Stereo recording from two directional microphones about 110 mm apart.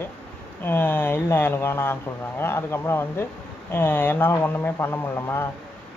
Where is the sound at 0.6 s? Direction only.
20° left (ahead or behind).